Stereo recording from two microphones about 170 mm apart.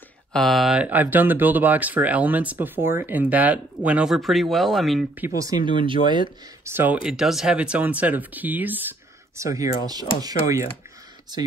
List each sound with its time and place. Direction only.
0.3 s speech: centre (ahead or behind)
5.1 s speech: 15° right (ahead or behind)
6.6 s speech: 10° right (ahead or behind)